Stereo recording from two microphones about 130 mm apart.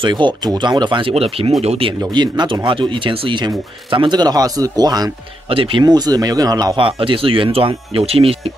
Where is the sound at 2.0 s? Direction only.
35° right (ahead or behind).